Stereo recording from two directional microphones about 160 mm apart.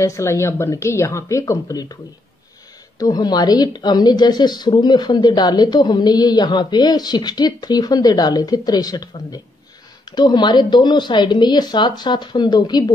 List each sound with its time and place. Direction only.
0.0 s speech: 20° left (ahead or behind)
3.0 s speech: 25° left (ahead or behind)